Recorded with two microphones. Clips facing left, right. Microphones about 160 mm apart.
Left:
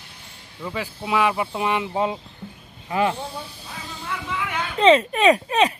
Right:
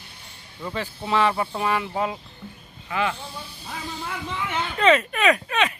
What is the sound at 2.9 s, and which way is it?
Speech, 35° left (ahead or behind).